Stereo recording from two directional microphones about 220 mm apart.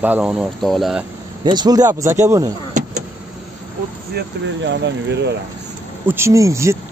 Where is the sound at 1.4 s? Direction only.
20° right (ahead or behind).